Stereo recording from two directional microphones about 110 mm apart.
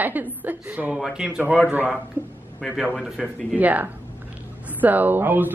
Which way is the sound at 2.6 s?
Centre (ahead or behind).